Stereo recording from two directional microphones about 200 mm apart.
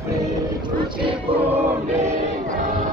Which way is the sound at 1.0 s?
30° right (ahead or behind).